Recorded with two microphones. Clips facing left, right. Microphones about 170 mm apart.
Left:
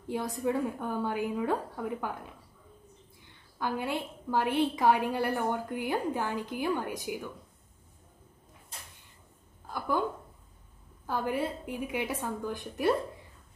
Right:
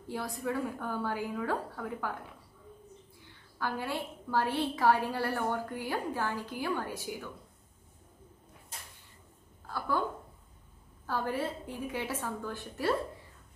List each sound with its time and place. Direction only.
0.1 s a woman's voice: 20° left (ahead or behind)
3.5 s a woman's voice: 20° left (ahead or behind)
9.7 s a sound: 15° left (ahead or behind)
11.1 s a woman's voice: 15° left (ahead or behind)